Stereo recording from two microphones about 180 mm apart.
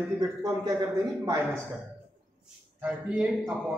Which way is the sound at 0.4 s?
20° right (ahead or behind).